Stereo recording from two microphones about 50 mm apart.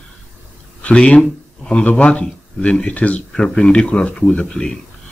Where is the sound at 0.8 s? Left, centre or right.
Left.